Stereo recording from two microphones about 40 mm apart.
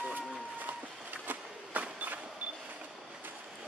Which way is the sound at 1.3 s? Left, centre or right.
Right.